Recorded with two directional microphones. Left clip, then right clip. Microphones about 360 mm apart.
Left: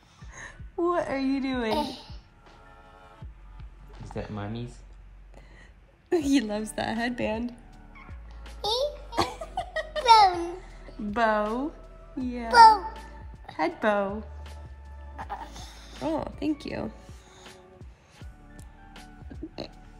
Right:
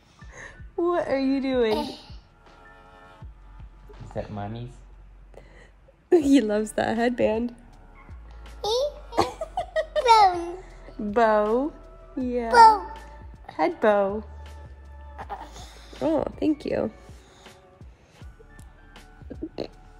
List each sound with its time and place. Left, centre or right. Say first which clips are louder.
0.2 s a woman's voice: right 1 dB; centre
3.9 s speech: right 3 dB; centre
6.0 s a woman's voice: right 6 dB; right
8.5 s babbling: right 2 dB; centre
12.3 s a child's voice: right 1 dB; centre
15.1 s music: even; centre
16.1 s a woman's voice: right 5 dB; right
19.6 s hum: right 5 dB; centre